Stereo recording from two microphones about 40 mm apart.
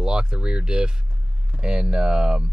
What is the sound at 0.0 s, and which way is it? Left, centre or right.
Speech, right.